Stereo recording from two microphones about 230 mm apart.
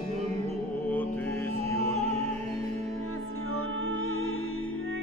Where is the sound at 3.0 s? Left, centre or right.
Left.